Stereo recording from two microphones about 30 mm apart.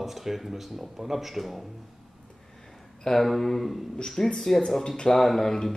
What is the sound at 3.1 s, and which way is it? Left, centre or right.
Speech, centre.